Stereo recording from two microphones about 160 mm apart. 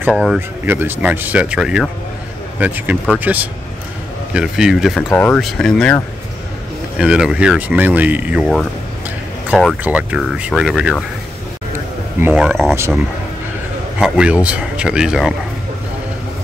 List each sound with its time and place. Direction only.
0.1 s speech: centre (ahead or behind)
0.7 s speech: 15° right (ahead or behind)
5.1 s speech: 10° left (ahead or behind)
7.0 s speech: 5° right (ahead or behind)
9.5 s speech: 5° right (ahead or behind)
12.2 s speech: 15° right (ahead or behind)